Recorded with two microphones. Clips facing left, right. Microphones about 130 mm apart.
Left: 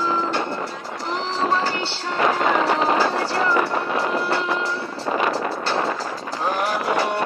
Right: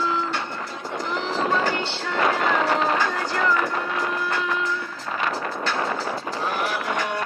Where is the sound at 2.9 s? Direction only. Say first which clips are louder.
Left 4 dB; 35° left (ahead or behind).